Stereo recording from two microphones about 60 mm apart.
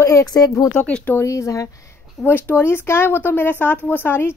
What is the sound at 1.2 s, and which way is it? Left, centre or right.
Speech, left.